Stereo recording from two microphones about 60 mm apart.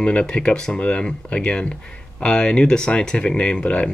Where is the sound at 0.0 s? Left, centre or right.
Centre.